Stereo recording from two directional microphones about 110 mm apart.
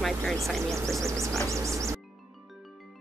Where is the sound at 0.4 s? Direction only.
25° right (ahead or behind).